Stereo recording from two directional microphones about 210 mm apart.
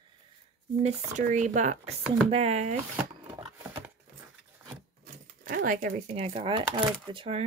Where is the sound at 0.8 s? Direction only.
35° right (ahead or behind).